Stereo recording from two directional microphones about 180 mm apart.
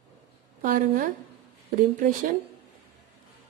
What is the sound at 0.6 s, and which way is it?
Speech, 50° right (ahead or behind).